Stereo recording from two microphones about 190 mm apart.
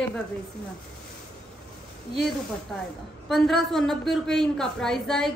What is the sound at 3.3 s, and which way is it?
A woman's voice, centre (ahead or behind).